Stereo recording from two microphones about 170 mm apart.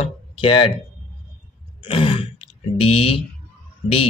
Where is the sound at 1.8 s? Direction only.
35° left (ahead or behind).